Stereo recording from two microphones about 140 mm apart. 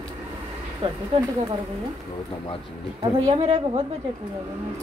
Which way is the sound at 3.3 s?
40° right (ahead or behind).